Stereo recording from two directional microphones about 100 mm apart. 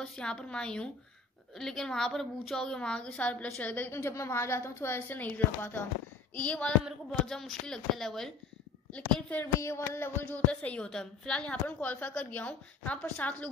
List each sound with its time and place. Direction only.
0.0 s a woman's voice: 5° left (ahead or behind)
8.9 s a woman's voice: 15° left (ahead or behind)
9.6 s a woman's voice: 30° left (ahead or behind)